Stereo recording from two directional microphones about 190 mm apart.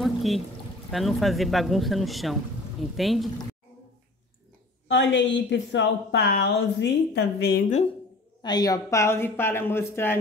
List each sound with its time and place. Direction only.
0.0 s pour: centre (ahead or behind)
0.9 s speech: centre (ahead or behind)
4.8 s a woman's voice: 70° left (ahead or behind)
8.4 s a woman's voice: 20° left (ahead or behind)